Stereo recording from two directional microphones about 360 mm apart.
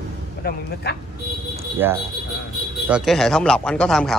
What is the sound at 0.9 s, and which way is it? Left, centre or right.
Speech, left.